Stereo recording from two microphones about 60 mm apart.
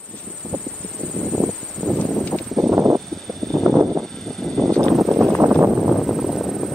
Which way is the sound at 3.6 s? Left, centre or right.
Right.